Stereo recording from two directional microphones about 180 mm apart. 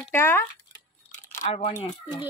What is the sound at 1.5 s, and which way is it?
Speech, 35° left (ahead or behind).